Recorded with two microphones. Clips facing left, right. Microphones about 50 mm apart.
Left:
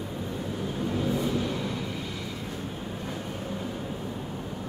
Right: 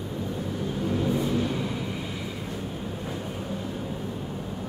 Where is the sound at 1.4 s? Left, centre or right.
Centre.